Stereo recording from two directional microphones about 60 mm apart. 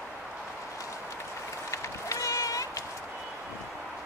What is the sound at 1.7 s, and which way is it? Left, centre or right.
Run, left.